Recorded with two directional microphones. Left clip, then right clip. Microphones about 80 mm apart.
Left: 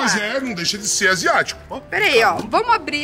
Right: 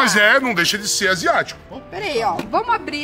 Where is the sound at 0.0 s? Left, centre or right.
Right.